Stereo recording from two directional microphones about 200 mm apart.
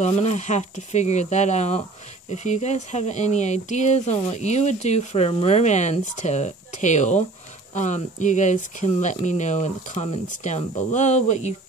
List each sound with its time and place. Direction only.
0.0 s speech: 35° left (ahead or behind)